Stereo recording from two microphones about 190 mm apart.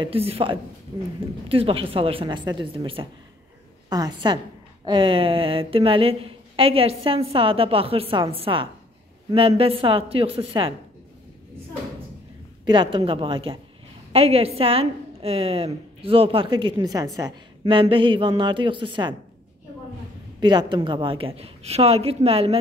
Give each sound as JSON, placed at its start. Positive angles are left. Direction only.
{"t": 0.0, "sound": "a woman's voice", "side_deg": -30}
{"t": 12.6, "sound": "a woman's voice", "side_deg": -25}
{"t": 20.3, "sound": "a woman's voice", "side_deg": -25}